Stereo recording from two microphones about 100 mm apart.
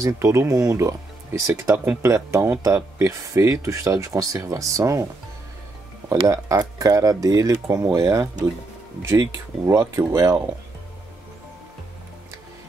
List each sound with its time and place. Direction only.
0.0 s speech: 30° right (ahead or behind)
6.2 s speech: 35° right (ahead or behind)